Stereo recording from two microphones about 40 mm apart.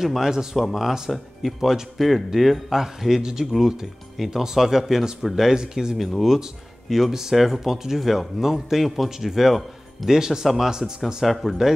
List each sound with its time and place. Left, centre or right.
0.0 s speech: centre
5.9 s speech: centre
6.2 s speech: centre
10.1 s speech: centre